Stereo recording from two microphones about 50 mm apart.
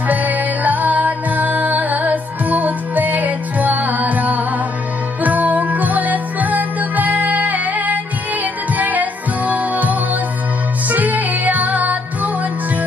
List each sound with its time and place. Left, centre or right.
0.1 s music: right